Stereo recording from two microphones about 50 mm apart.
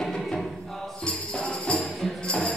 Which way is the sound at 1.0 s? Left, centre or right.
Centre.